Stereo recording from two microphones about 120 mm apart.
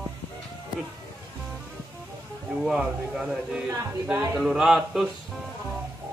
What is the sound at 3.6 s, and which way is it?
Music, 20° right (ahead or behind).